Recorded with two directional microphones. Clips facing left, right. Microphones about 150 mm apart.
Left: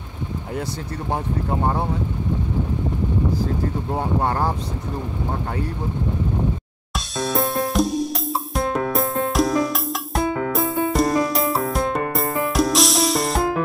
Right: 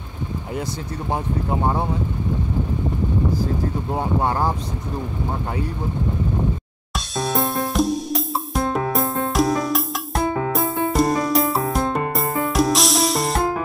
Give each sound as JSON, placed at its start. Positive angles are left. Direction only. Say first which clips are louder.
{"t": 4.2, "sound": "speech", "louder": "right 1 dB", "side_deg": -10}
{"t": 6.9, "sound": "music", "louder": "even", "side_deg": 0}